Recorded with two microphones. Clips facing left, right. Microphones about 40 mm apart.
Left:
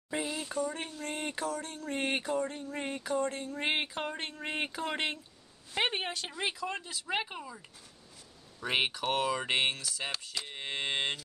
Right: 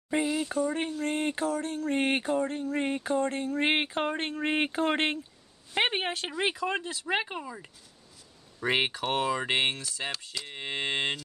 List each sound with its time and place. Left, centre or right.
0.1 s a sound: centre
0.5 s speech: right
6.8 s speech: right
9.0 s speech: centre
10.1 s speech: centre
10.5 s a sound: centre